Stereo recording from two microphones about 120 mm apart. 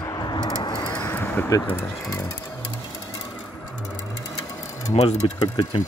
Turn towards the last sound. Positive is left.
turn(degrees=40)  # may be behind; listen again after turning